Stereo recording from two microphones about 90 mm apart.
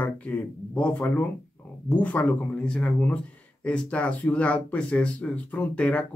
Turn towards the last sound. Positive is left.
turn(degrees=15)  # may be behind; listen again after turning